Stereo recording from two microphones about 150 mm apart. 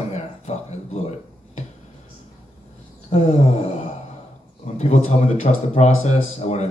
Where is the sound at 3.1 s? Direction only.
45° left (ahead or behind).